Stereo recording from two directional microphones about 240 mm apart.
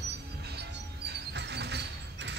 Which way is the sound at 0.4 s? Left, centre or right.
Right.